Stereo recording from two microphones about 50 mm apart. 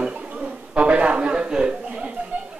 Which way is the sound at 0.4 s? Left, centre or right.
Right.